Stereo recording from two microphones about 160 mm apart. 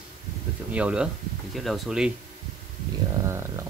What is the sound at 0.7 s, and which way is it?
Speech, 10° right (ahead or behind).